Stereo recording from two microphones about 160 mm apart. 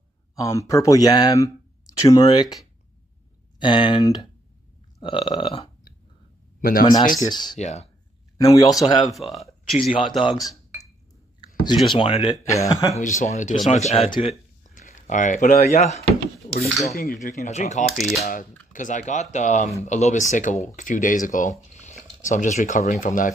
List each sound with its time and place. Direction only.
0.4 s speech: 20° left (ahead or behind)
5.0 s burping: 30° left (ahead or behind)
6.6 s speech: 65° left (ahead or behind)
7.2 s speech: 25° left (ahead or behind)
7.5 s speech: 45° left (ahead or behind)
8.4 s speech: 20° left (ahead or behind)
9.0 s speech: centre (ahead or behind)
9.8 s burping: 35° left (ahead or behind)
11.4 s speech: 30° left (ahead or behind)
12.9 s speech: 50° left (ahead or behind)
16.9 s speech: 70° left (ahead or behind); by 17.8 s 45° left (ahead or behind)
17.9 s a sound: centre (ahead or behind)
18.2 s speech: 60° left (ahead or behind)